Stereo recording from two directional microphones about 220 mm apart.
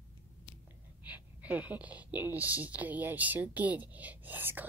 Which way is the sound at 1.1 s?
5° right (ahead or behind).